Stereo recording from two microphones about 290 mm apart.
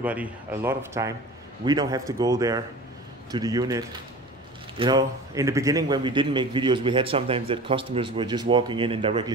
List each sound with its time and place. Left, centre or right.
0.0 s a man's voice: centre